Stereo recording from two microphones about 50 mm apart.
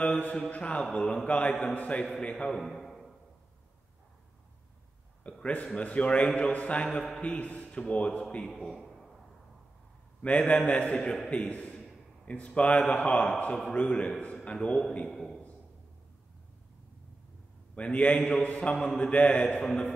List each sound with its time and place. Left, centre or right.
0.0 s mantra: left
0.4 s a man's voice: left
2.5 s a sound: centre
5.4 s a man's voice: left
8.5 s a man's voice: centre
10.2 s a man's voice: left
15.1 s a man's voice: centre
17.7 s a man's voice: left